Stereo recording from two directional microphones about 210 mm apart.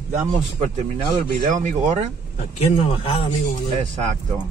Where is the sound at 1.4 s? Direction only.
35° right (ahead or behind).